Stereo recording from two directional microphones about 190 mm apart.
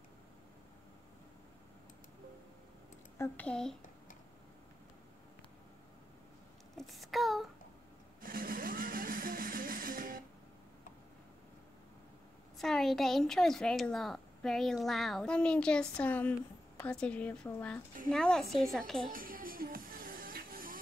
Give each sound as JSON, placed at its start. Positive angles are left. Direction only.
{"t": 3.2, "sound": "a woman's voice", "side_deg": 5}
{"t": 6.9, "sound": "a sound", "side_deg": 0}
{"t": 8.2, "sound": "music", "side_deg": -50}
{"t": 12.5, "sound": "a woman's voice", "side_deg": 0}
{"t": 19.0, "sound": "music", "side_deg": -50}